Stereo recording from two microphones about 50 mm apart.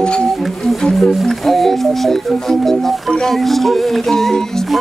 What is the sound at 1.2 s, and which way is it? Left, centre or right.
Music, centre.